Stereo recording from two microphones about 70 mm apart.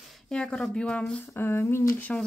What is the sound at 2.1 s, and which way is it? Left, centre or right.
Speech, centre.